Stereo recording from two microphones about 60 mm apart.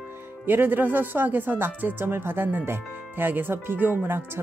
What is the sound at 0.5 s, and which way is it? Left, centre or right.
Speech, right.